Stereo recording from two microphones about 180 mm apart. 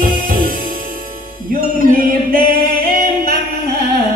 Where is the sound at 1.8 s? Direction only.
50° right (ahead or behind).